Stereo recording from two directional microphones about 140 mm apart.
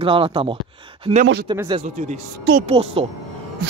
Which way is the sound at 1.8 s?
55° right (ahead or behind).